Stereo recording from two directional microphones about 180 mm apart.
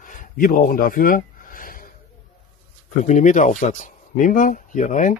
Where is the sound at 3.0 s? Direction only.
40° left (ahead or behind).